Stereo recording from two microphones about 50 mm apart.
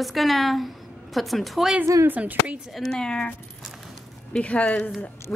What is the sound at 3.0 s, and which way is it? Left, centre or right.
Speech, centre.